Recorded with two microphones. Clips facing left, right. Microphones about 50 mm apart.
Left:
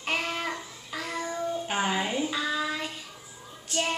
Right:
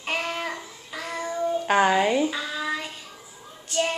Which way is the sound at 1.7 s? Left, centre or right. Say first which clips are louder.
Right 10 dB; right.